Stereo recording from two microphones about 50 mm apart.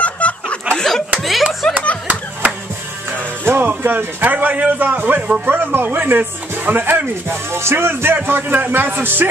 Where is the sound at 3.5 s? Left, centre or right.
Right.